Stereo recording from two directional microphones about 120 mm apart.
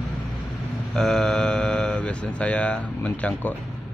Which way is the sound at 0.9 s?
5° left (ahead or behind).